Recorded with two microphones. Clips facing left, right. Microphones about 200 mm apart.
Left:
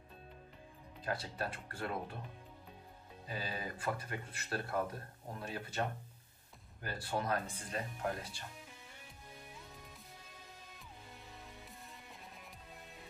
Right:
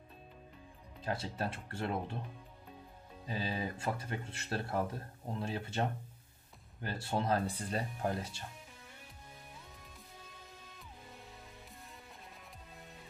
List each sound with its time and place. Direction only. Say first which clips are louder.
1.0 s speech: right 2 dB; 25° right (ahead or behind)
3.3 s speech: right 5 dB; 25° right (ahead or behind)